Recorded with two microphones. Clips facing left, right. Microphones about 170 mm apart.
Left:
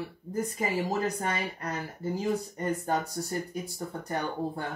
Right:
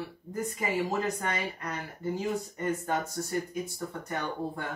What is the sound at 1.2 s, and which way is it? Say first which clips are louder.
Speech: left 1 dB; 35° left (ahead or behind).